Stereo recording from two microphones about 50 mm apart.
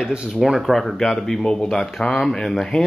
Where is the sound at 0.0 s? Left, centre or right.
Centre.